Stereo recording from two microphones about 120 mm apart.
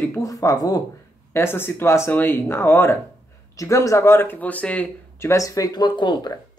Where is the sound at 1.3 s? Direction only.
20° left (ahead or behind).